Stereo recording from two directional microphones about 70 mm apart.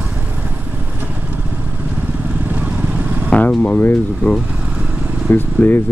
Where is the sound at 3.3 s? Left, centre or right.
Centre.